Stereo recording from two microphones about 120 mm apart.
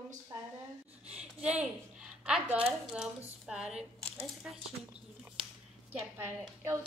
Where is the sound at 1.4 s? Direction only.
10° right (ahead or behind).